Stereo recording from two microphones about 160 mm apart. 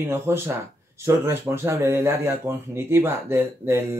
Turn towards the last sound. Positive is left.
turn(degrees=-15)  # may be behind; listen again after turning